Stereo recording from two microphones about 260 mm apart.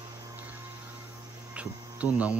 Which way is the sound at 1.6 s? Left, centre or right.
Centre.